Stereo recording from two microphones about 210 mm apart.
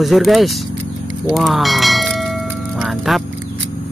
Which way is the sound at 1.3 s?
Centre (ahead or behind).